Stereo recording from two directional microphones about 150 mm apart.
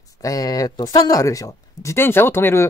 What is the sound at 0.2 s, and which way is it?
Speech, 25° left (ahead or behind).